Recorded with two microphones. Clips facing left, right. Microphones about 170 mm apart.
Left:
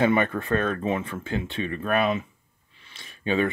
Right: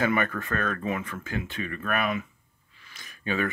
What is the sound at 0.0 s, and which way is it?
Speech, 25° left (ahead or behind).